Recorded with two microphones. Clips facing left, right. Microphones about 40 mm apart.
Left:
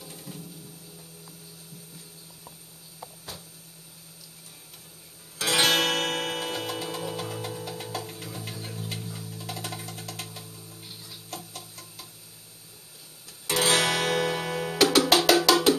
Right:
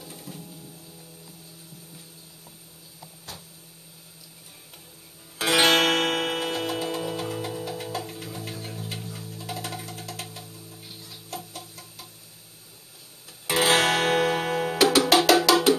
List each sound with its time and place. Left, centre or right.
0.0 s music: centre
5.4 s music: right; by 12.1 s centre
13.5 s guitar: right
14.8 s music: centre
15.2 s percussion: centre
15.5 s music: centre